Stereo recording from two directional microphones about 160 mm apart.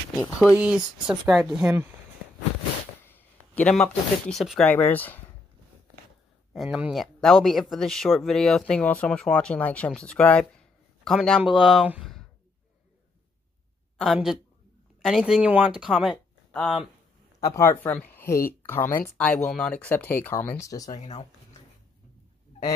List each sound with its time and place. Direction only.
0.6 s speech: 5° right (ahead or behind)
3.1 s speech: 10° left (ahead or behind)
4.6 s speech: 10° left (ahead or behind)
6.5 s speech: centre (ahead or behind)
14.1 s speech: centre (ahead or behind)
17.4 s speech: 20° left (ahead or behind)
20.9 s speech: 45° left (ahead or behind)